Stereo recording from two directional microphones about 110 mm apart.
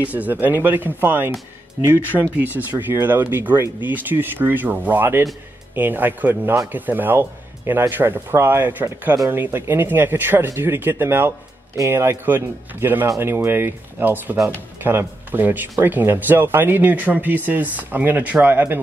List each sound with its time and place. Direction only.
0.0 s speech: 15° right (ahead or behind)
2.3 s speech: 15° right (ahead or behind)
9.1 s speech: 30° right (ahead or behind)